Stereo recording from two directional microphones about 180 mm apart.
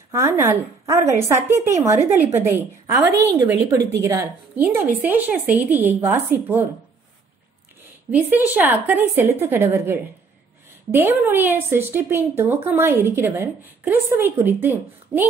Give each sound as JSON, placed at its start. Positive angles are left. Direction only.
{"t": 0.1, "sound": "a woman's voice", "side_deg": -15}
{"t": 8.1, "sound": "a woman's voice", "side_deg": -10}
{"t": 11.2, "sound": "a woman's voice", "side_deg": -10}